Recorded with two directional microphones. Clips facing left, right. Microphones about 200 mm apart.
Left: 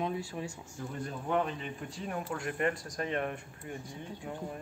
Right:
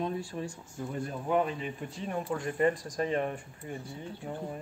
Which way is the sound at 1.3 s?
Centre (ahead or behind).